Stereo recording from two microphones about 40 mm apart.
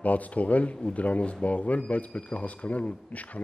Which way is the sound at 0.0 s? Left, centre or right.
Left.